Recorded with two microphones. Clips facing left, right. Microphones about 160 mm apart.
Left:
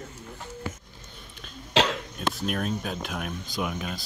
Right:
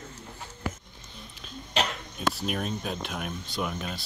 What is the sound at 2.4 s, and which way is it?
Speech, centre (ahead or behind).